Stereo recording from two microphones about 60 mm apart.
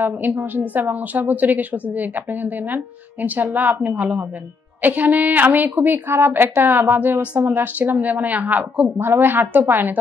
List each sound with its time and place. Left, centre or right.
0.0 s a woman's voice: right
8.9 s a woman's voice: right